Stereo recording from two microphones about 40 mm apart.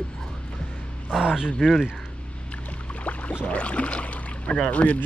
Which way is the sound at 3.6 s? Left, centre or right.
Left.